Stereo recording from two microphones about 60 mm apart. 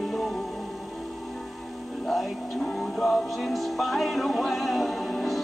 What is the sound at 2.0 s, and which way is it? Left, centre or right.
Music, centre.